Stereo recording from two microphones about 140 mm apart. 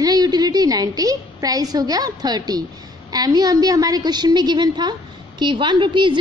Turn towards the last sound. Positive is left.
turn(degrees=-35)  # may be behind; listen again after turning